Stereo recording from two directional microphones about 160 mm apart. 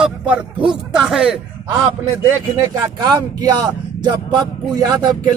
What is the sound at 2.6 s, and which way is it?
Speech, 20° right (ahead or behind).